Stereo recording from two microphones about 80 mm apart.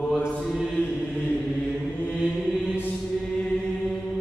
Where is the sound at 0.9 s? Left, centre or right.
Centre.